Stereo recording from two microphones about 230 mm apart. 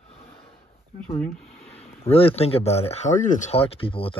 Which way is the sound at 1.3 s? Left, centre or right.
Left.